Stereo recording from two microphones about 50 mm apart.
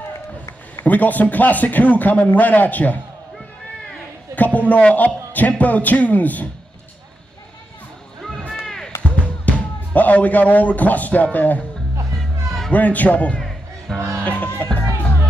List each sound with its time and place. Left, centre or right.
0.8 s speech: left
4.6 s speech: left
8.3 s a sound: centre
8.6 s music: centre
9.0 s music: left
11.3 s speech: left
12.7 s speech: left
13.4 s music: centre
13.9 s music: right
14.2 s music: left